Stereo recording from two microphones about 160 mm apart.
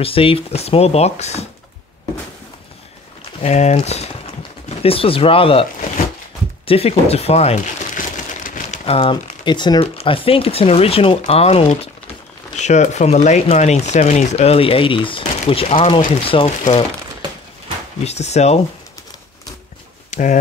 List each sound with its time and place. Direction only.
0.0 s speech: 35° left (ahead or behind)
3.3 s speech: 45° left (ahead or behind)
6.6 s crumpling: 35° left (ahead or behind); by 8.8 s 55° left (ahead or behind)
8.8 s speech: 35° left (ahead or behind)
18.0 s speech: 45° left (ahead or behind)
20.1 s a sound: 50° left (ahead or behind)